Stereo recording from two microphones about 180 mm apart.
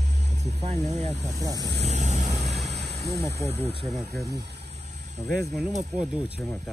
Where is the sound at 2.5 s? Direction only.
Centre (ahead or behind).